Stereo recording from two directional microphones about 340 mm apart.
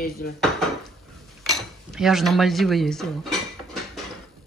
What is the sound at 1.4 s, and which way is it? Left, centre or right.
Speech, centre.